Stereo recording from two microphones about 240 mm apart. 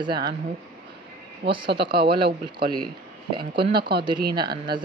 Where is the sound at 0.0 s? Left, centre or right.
Centre.